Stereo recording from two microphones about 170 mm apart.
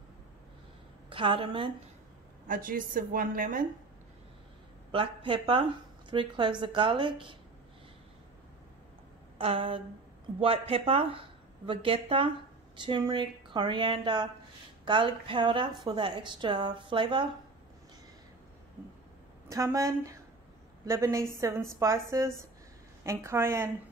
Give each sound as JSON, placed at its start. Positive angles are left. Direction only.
{"t": 1.1, "sound": "a woman's voice", "side_deg": -30}
{"t": 2.4, "sound": "a woman's voice", "side_deg": -55}
{"t": 4.9, "sound": "a woman's voice", "side_deg": -30}
{"t": 9.4, "sound": "a woman's voice", "side_deg": -35}
{"t": 19.5, "sound": "a woman's voice", "side_deg": -20}